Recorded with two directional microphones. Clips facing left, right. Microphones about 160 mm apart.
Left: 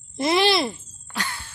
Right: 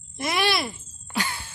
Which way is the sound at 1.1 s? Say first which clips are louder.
Right 2 dB; 10° right (ahead or behind).